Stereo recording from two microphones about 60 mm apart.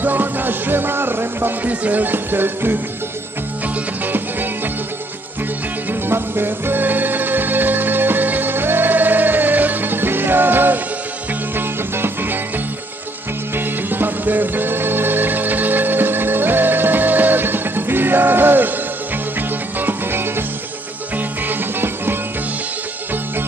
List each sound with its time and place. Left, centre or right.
0.0 s music: right
1.7 s music: right
5.9 s music: right
19.8 s music: right